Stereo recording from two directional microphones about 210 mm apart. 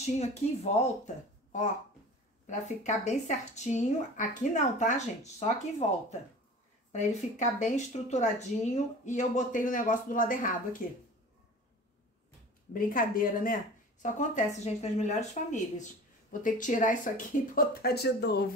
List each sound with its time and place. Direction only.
0.0 s speech: 30° left (ahead or behind)
12.7 s speech: 40° left (ahead or behind)
17.6 s speech: 50° left (ahead or behind)